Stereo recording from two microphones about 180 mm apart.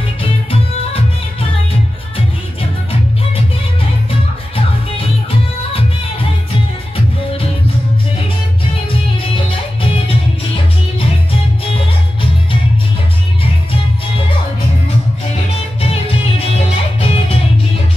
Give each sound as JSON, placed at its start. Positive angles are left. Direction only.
{"t": 0.2, "sound": "music", "side_deg": 30}
{"t": 2.1, "sound": "music", "side_deg": 30}
{"t": 5.6, "sound": "music", "side_deg": 30}
{"t": 9.3, "sound": "music", "side_deg": 30}
{"t": 15.8, "sound": "music", "side_deg": 35}